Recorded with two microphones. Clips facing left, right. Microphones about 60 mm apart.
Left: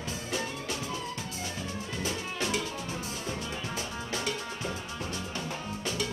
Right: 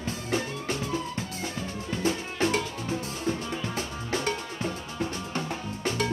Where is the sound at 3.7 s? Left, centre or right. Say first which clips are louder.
Right 4 dB; right.